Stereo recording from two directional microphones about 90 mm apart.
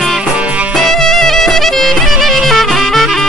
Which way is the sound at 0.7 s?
5° left (ahead or behind).